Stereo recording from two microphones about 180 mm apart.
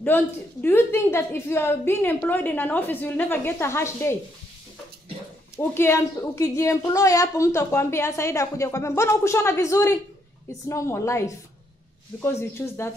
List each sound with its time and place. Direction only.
0.0 s a woman's voice: 10° left (ahead or behind)
5.6 s a woman's voice: 15° left (ahead or behind)